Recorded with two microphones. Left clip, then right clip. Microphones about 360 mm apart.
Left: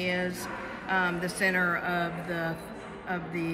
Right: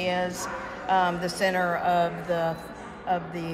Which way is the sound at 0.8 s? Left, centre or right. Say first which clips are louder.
Right 5 dB; right.